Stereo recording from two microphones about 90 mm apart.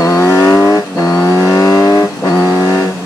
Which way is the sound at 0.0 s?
35° left (ahead or behind).